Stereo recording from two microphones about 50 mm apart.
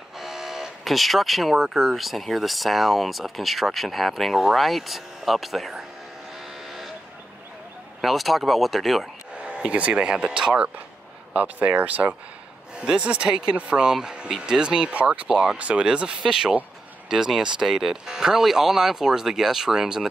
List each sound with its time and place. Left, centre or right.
0.2 s vehicle: centre
1.8 s speech: centre
8.0 s speech: centre
9.7 s speech: right
11.3 s speech: right
12.8 s speech: centre
15.0 s speech: right
15.2 s speech: centre
15.5 s speech: right